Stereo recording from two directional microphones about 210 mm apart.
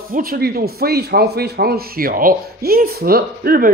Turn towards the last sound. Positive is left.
turn(degrees=-45)  # may be behind; listen again after turning